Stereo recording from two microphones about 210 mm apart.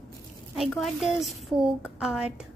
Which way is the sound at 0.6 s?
Centre (ahead or behind).